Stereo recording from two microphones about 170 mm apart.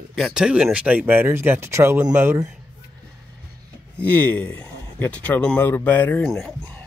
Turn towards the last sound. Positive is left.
turn(degrees=5)  # may be behind; listen again after turning